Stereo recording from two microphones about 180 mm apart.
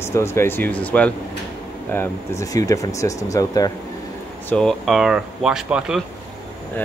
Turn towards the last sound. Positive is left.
turn(degrees=-5)  # may be behind; listen again after turning